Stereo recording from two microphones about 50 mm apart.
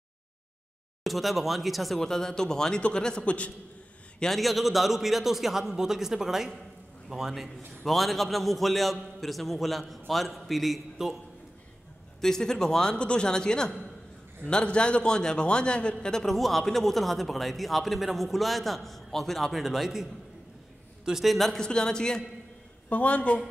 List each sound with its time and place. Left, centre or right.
1.0 s a man's voice: centre
2.0 s a man's voice: centre
4.3 s a man's voice: centre
7.4 s a man's voice: centre
12.2 s a man's voice: centre
21.5 s a man's voice: centre
22.8 s a man's voice: left